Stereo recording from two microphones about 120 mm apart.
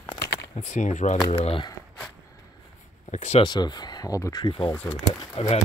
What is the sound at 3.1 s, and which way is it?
Speech, 70° left (ahead or behind).